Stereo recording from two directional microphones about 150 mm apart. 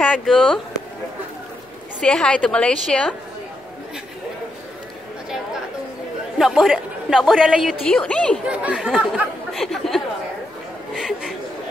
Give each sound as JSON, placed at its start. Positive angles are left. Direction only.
{"t": 0.0, "sound": "speech", "side_deg": 5}
{"t": 2.0, "sound": "a woman's voice", "side_deg": 5}
{"t": 6.3, "sound": "a woman's voice", "side_deg": 0}
{"t": 8.5, "sound": "speech", "side_deg": -10}
{"t": 11.0, "sound": "a sound", "side_deg": 0}